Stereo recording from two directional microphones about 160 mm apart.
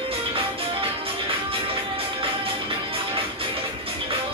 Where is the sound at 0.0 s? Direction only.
35° right (ahead or behind).